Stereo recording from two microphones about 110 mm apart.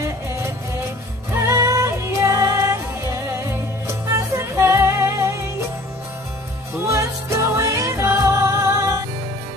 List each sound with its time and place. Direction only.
0.0 s music: 25° right (ahead or behind)
6.9 s music: 25° right (ahead or behind)